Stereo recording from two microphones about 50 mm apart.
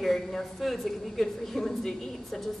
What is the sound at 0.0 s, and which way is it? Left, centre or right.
A woman's voice, centre.